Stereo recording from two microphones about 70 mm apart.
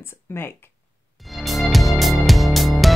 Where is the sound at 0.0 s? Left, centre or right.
Left.